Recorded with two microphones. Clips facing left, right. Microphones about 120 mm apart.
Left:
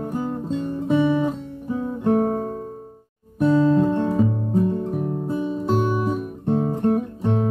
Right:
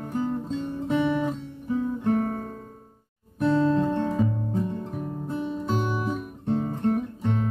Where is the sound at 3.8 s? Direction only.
15° left (ahead or behind).